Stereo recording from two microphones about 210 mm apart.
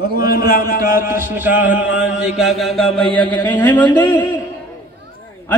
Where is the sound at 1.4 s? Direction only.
10° right (ahead or behind).